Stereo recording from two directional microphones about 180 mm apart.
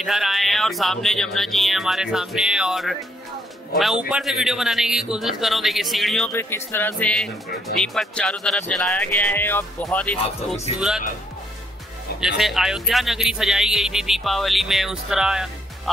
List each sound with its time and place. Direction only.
0.0 s speech: centre (ahead or behind)
6.3 s speech: 10° left (ahead or behind)
10.2 s speech: 35° left (ahead or behind)
12.2 s speech: centre (ahead or behind)